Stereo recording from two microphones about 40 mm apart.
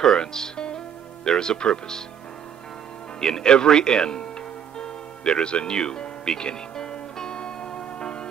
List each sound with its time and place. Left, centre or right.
0.0 s speech: centre
3.2 s speech: centre
4.7 s music: left